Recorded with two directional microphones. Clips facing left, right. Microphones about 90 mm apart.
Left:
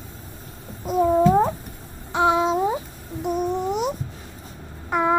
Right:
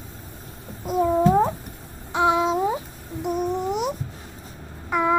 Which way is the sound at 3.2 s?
30° left (ahead or behind).